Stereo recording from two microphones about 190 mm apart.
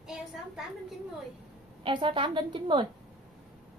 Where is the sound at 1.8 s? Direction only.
25° right (ahead or behind).